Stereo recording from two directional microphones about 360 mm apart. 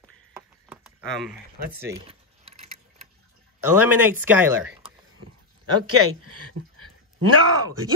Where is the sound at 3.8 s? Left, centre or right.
Centre.